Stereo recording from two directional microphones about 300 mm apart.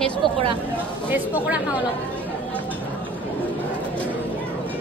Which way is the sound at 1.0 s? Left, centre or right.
Centre.